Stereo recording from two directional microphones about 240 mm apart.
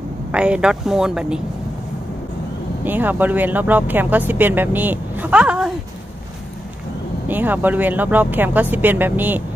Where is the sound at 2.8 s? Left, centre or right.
Centre.